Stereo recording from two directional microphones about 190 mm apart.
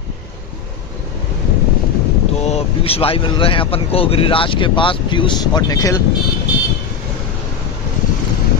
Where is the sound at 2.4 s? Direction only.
35° left (ahead or behind).